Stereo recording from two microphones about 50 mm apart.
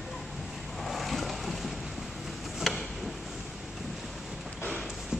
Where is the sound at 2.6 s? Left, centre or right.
Centre.